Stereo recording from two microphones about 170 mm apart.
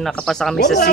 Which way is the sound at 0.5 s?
65° left (ahead or behind).